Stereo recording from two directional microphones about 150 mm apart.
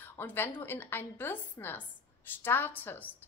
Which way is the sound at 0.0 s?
15° left (ahead or behind).